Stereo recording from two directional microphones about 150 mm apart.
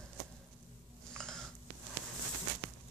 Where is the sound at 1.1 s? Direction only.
5° left (ahead or behind).